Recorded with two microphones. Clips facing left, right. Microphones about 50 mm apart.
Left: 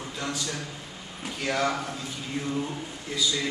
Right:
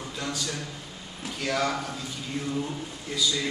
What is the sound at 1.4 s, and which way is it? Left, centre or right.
Speech, centre.